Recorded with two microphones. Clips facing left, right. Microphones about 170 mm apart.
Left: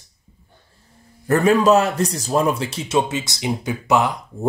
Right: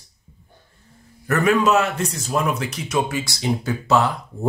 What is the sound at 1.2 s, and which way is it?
A man's voice, 30° left (ahead or behind).